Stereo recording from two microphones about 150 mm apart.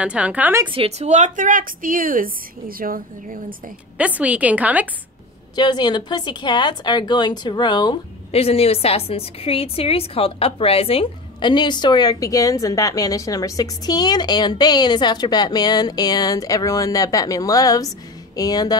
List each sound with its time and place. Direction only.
0.0 s a woman's voice: 5° right (ahead or behind)
0.7 s a woman's voice: 40° right (ahead or behind); by 3.5 s 70° right (ahead or behind)
4.0 s a woman's voice: 10° right (ahead or behind)
5.6 s a woman's voice: 30° left (ahead or behind)
8.3 s a woman's voice: 40° left (ahead or behind); by 18.8 s 25° left (ahead or behind)